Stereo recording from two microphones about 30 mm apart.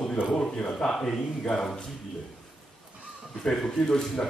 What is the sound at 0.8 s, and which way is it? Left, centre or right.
Speech, centre.